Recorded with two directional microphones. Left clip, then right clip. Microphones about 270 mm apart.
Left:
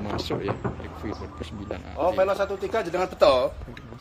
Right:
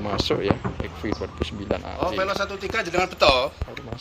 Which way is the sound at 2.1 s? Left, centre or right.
Left.